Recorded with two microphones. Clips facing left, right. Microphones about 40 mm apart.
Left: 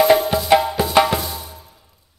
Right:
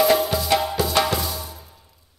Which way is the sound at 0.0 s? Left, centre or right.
Left.